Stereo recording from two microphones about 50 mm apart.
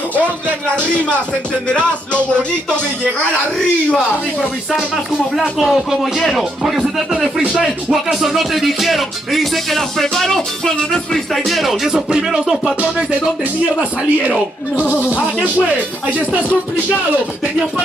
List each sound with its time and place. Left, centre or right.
0.7 s music: left
4.6 s music: centre
6.6 s speech: centre
7.9 s music: centre
11.4 s speech: centre
12.3 s music: centre
13.7 s speech: centre
15.0 s speech: left